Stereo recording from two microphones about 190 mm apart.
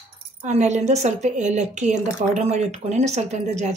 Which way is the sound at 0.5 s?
35° right (ahead or behind).